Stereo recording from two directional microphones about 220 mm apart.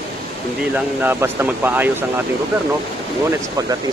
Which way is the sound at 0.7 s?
10° right (ahead or behind).